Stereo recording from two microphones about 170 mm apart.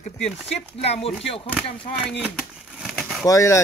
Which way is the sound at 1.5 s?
5° left (ahead or behind).